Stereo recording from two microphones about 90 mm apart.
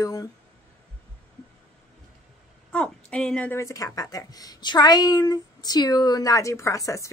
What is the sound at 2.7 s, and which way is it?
Speech, 10° left (ahead or behind).